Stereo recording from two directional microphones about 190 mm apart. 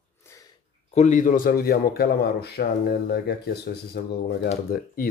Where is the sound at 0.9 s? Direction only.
40° left (ahead or behind).